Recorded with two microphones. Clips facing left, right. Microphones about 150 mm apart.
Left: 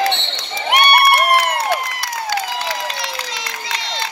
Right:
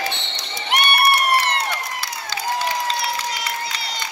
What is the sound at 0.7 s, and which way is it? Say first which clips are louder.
Crowd: left 5 dB; 60° left (ahead or behind).